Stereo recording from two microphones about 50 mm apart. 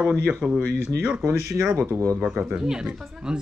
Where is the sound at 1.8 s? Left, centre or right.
Right.